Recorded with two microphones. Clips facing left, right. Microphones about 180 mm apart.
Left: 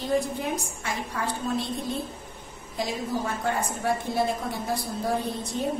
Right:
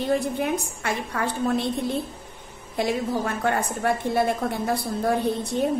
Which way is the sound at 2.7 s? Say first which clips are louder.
Right 5 dB; 60° right (ahead or behind).